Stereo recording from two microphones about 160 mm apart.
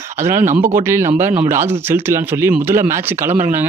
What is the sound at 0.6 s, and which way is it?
Speech, 50° right (ahead or behind).